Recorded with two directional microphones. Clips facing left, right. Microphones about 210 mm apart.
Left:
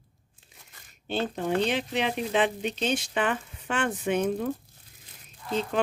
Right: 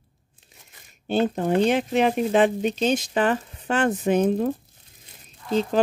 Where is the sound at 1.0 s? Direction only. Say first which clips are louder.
Right 7 dB; 45° right (ahead or behind).